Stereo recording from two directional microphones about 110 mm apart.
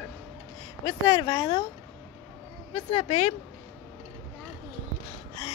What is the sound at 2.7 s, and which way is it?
Speech, 80° left.